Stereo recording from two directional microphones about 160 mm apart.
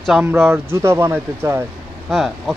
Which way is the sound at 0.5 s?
15° right (ahead or behind).